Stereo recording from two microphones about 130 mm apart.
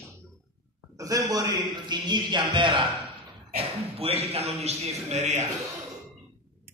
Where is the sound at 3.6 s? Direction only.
50° right (ahead or behind).